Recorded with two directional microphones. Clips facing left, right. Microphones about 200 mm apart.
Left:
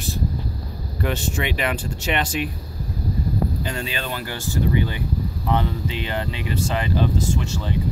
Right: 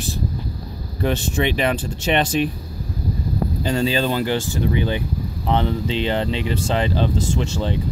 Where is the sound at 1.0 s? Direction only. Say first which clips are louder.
Right 4 dB; 30° right (ahead or behind).